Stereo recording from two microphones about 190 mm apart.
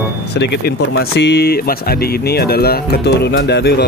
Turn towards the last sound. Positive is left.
turn(degrees=60)  # may be behind; listen again after turning